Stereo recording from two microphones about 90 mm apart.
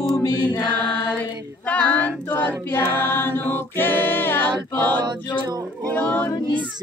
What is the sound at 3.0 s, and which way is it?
Music, 25° left (ahead or behind).